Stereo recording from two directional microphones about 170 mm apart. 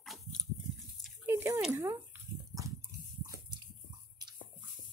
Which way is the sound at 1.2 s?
15° right (ahead or behind).